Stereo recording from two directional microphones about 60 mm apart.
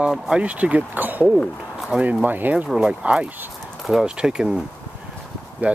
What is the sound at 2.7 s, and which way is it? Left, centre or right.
Speech, centre.